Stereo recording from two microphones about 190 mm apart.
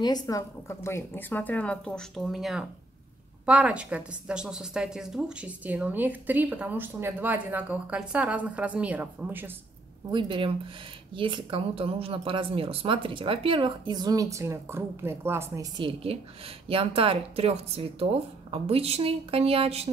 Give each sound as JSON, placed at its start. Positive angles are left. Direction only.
{"t": 0.0, "sound": "a woman's voice", "side_deg": 20}
{"t": 10.1, "sound": "a woman's voice", "side_deg": -25}
{"t": 16.0, "sound": "speech", "side_deg": -30}